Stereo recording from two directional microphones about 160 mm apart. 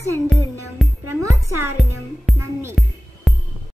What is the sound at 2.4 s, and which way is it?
Speech, 15° right (ahead or behind).